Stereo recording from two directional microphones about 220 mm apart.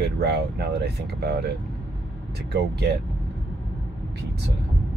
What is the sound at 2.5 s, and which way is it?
Speech, 45° right (ahead or behind).